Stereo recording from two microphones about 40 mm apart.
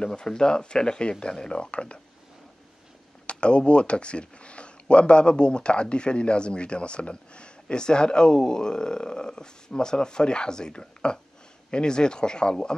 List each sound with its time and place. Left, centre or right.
0.0 s speech: centre
3.3 s speech: left